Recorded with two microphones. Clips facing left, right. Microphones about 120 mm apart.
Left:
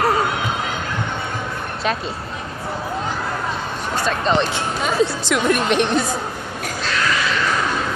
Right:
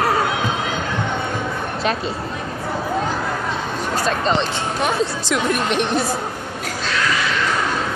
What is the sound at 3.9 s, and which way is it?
Speech, 40° right (ahead or behind).